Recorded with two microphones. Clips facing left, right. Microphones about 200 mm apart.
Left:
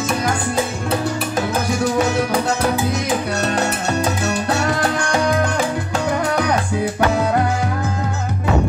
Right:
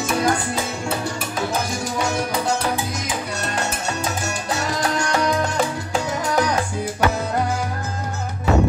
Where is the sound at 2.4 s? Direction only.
65° left (ahead or behind).